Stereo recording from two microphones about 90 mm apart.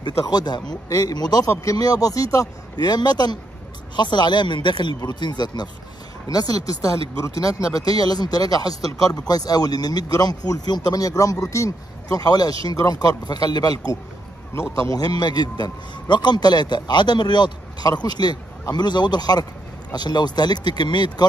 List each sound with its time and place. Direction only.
0.0 s speech: 50° left (ahead or behind)
1.5 s speech: 35° left (ahead or behind)
14.5 s speech: 30° left (ahead or behind)
15.0 s speech: 50° left (ahead or behind)